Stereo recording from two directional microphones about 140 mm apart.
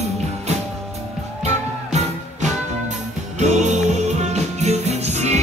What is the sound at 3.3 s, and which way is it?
Music, 55° right (ahead or behind).